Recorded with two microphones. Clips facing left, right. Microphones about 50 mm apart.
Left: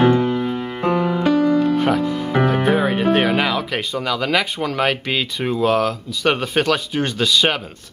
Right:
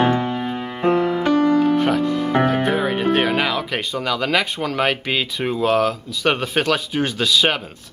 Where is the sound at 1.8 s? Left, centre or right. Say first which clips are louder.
Even; centre.